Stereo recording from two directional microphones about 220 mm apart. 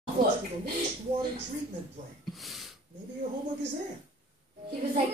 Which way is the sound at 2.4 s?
Centre (ahead or behind).